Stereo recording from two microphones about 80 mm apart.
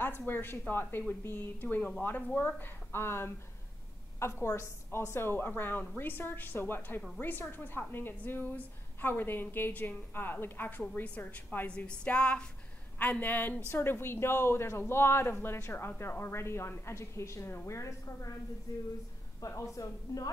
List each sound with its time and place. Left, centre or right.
0.3 s a woman's voice: left